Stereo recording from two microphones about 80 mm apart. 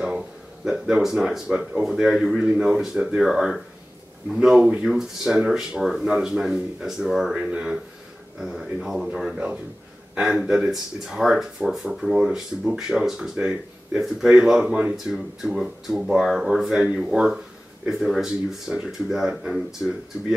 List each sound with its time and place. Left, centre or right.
0.7 s speech: centre
4.6 s speech: centre
4.8 s speech: centre